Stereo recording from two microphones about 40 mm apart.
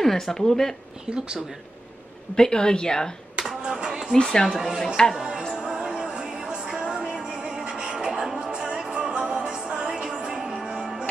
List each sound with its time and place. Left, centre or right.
0.0 s a woman's voice: centre
2.3 s a woman's voice: centre
3.4 s a sound: right
4.1 s a woman's voice: centre
4.5 s speech: centre
5.1 s music: centre